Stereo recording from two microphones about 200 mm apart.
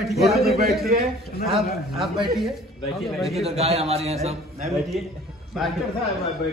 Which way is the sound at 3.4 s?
30° right (ahead or behind).